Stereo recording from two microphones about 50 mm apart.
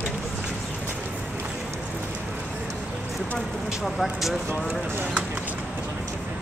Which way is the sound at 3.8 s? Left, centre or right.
Centre.